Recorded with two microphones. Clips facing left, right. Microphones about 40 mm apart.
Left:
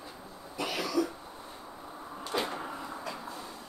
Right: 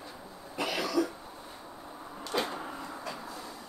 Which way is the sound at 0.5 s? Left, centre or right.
Right.